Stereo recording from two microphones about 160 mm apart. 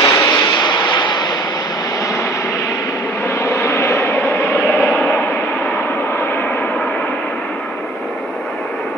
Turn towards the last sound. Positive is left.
turn(degrees=5)  # may be behind; listen again after turning